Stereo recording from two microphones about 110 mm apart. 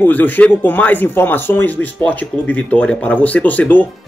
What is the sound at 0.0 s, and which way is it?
Speech, 15° left (ahead or behind).